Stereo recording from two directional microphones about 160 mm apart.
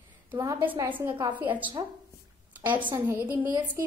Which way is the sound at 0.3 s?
25° right (ahead or behind).